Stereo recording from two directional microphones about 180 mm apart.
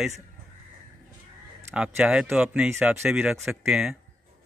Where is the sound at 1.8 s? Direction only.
5° right (ahead or behind).